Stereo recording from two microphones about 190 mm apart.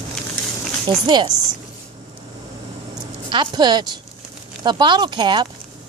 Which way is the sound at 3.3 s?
25° right (ahead or behind).